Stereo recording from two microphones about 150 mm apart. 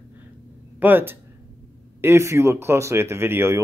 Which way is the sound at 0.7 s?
15° right (ahead or behind).